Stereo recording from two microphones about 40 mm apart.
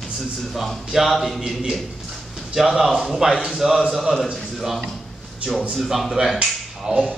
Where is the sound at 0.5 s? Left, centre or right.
Centre.